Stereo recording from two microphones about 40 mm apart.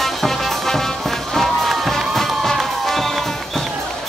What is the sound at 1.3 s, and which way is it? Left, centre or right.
Music, centre.